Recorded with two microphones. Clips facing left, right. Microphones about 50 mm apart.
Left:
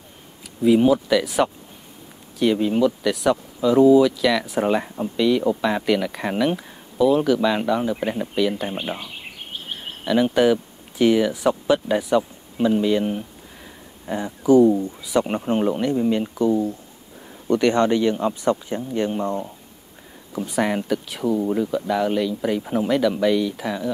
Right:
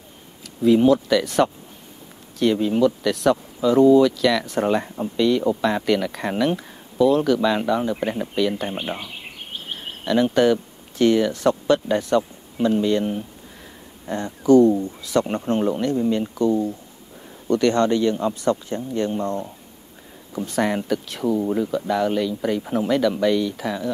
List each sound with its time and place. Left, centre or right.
0.6 s speech: centre